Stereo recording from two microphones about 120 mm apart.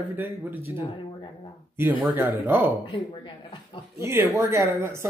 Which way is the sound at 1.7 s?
15° right (ahead or behind).